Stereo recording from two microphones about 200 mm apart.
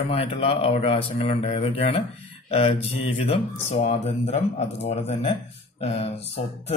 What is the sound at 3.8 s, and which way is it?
Speech, 35° left (ahead or behind).